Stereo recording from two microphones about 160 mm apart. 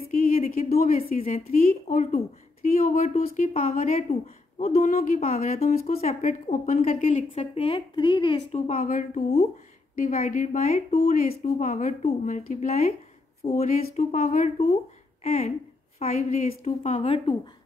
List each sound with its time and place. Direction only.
0.1 s a sound: 45° left (ahead or behind)
0.7 s a woman's voice: 40° left (ahead or behind)
1.2 s a woman's voice: 55° left (ahead or behind)
2.8 s a woman's voice: 40° left (ahead or behind)
3.3 s a woman's voice: 55° left (ahead or behind); by 8.5 s 30° left (ahead or behind)
8.5 s a woman's voice: 50° left (ahead or behind)
16.0 s a woman's voice: 45° left (ahead or behind)